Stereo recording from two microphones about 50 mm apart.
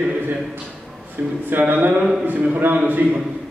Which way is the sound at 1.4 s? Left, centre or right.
Right.